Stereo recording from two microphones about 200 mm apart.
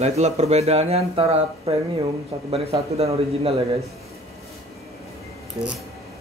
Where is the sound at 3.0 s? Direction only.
30° right (ahead or behind).